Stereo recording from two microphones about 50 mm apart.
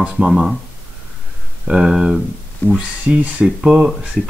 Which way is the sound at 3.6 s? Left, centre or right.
Centre.